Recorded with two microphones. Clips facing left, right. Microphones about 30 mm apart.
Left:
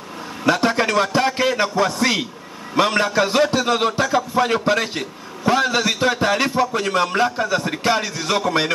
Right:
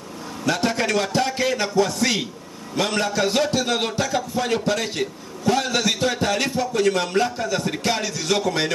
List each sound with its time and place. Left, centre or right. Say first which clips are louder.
0.5 s a man's voice: left 4 dB; centre